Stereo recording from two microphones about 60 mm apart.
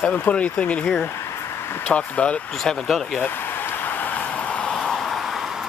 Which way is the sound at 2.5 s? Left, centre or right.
Centre.